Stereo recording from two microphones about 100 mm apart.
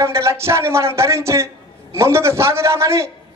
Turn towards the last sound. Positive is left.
turn(degrees=-30)  # may be behind; listen again after turning